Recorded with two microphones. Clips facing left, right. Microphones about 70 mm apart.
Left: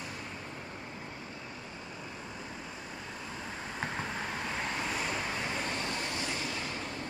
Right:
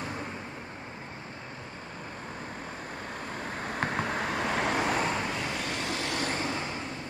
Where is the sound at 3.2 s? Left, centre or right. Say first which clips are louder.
Right 6 dB; right.